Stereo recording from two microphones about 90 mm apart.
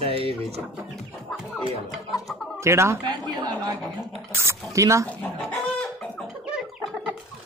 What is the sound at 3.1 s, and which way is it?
Speech, 50° right (ahead or behind).